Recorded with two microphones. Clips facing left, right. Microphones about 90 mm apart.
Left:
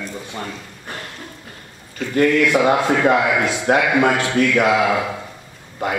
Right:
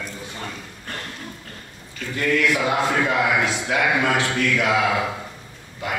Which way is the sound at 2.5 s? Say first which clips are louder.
Left 5 dB; 45° left (ahead or behind).